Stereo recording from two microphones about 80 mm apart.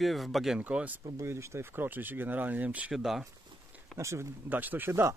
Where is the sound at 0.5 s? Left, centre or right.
Centre.